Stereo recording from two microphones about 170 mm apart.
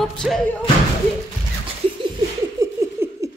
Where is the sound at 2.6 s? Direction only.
15° right (ahead or behind).